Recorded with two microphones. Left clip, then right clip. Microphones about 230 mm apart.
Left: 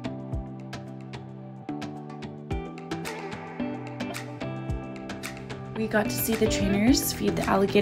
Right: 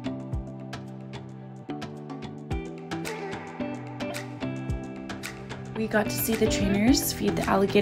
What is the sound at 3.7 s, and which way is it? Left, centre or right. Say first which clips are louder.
Music: even; centre.